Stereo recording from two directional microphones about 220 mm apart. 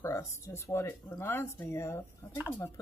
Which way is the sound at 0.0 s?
15° left (ahead or behind).